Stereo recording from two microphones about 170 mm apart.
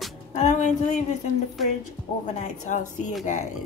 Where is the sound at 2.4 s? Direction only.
45° left (ahead or behind).